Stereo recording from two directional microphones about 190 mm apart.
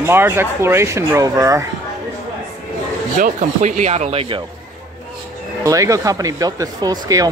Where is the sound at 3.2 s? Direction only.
40° right (ahead or behind).